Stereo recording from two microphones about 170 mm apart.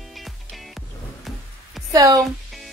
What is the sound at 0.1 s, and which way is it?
Music, centre (ahead or behind).